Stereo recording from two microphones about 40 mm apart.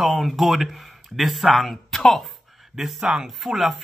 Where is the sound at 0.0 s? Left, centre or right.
Centre.